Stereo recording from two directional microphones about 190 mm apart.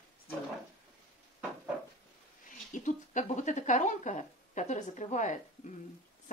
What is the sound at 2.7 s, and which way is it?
A woman's voice, 40° left (ahead or behind).